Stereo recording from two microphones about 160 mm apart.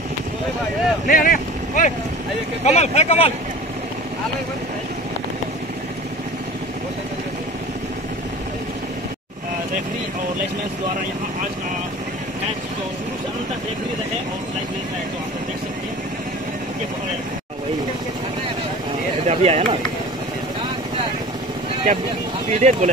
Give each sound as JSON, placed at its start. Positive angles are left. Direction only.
{"t": 1.0, "sound": "speech", "side_deg": 60}
{"t": 2.6, "sound": "speech", "side_deg": 40}
{"t": 19.2, "sound": "speech", "side_deg": -45}
{"t": 22.5, "sound": "speech", "side_deg": -45}